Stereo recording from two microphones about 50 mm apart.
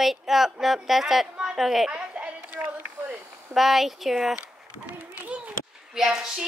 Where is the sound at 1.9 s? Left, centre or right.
Right.